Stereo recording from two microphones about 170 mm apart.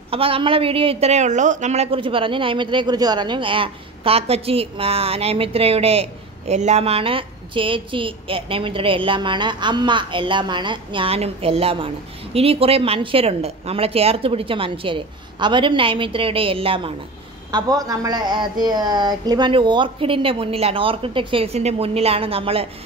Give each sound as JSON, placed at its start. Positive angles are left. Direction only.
{"t": 0.1, "sound": "a woman's voice", "side_deg": -35}